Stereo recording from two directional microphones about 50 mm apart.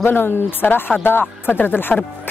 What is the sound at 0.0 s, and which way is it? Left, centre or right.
A woman's voice, left.